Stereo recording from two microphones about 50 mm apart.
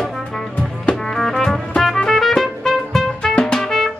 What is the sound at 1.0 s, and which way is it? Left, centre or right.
Music, centre.